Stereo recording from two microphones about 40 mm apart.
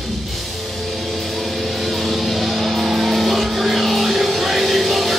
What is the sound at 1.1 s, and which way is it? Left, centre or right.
Music, centre.